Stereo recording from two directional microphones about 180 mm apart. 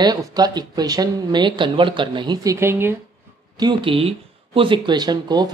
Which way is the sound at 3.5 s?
25° right (ahead or behind).